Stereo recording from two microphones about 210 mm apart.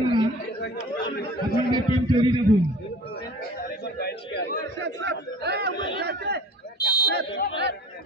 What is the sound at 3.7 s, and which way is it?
Chatter, 50° left (ahead or behind).